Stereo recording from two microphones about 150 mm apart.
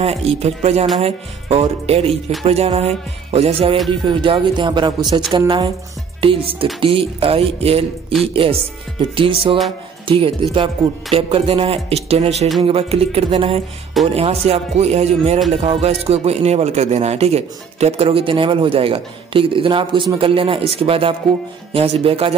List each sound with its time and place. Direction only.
0.0 s speech: 45° right (ahead or behind)
6.2 s speech: 35° right (ahead or behind)